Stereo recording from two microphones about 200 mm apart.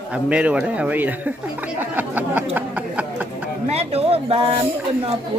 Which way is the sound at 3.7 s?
30° right (ahead or behind).